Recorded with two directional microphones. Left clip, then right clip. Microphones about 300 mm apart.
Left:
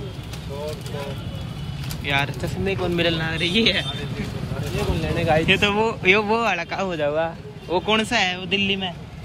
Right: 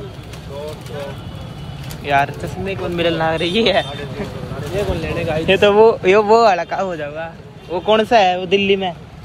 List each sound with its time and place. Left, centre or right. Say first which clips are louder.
2.0 s a man's voice: right 7 dB; centre
4.8 s speech: right 3 dB; left
5.5 s speech: right 9 dB; centre
8.5 s speech: right 7 dB; centre